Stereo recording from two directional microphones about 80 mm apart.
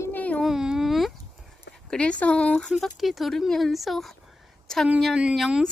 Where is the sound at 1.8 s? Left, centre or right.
Centre.